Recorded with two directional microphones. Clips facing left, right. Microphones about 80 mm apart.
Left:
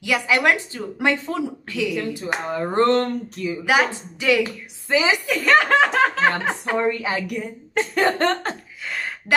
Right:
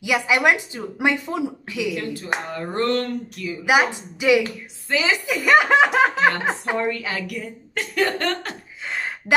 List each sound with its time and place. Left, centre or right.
0.0 s a woman's voice: centre
2.5 s speech: left
3.6 s a woman's voice: centre
4.4 s speech: centre
5.2 s a woman's voice: centre
6.8 s speech: left
8.8 s a sound: right